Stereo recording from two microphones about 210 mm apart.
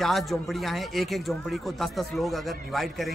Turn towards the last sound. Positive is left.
turn(degrees=0)  # may be behind; listen again after turning